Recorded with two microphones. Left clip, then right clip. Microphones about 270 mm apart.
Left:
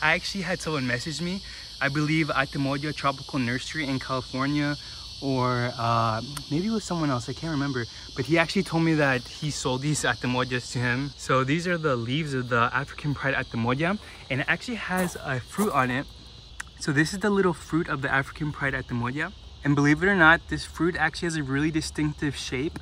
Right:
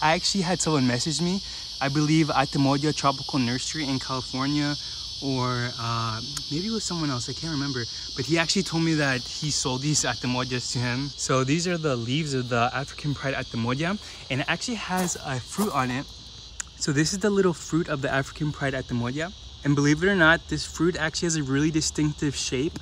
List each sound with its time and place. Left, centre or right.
0.0 s speech: centre